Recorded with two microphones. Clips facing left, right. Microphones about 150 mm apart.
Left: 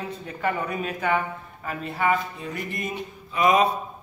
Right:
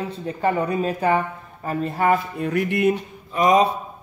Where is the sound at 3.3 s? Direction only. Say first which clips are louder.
Right 3 dB; 40° right (ahead or behind).